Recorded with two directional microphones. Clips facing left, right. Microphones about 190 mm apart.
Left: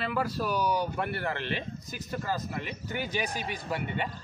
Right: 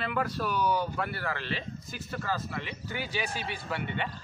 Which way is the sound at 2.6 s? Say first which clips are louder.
Left 1 dB; 45° left (ahead or behind).